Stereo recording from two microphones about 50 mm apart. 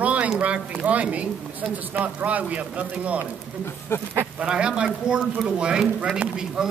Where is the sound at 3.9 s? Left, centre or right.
Left.